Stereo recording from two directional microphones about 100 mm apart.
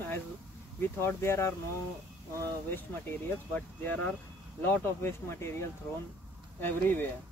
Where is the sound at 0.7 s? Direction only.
25° left (ahead or behind).